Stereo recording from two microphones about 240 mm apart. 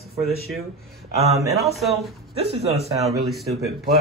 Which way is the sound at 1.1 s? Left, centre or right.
Right.